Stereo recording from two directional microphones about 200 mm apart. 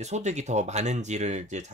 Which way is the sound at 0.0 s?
35° right (ahead or behind).